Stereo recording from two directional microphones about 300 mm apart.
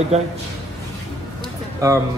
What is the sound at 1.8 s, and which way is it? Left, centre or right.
Speech, centre.